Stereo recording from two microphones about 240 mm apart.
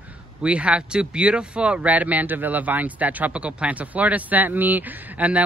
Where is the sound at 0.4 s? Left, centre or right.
Centre.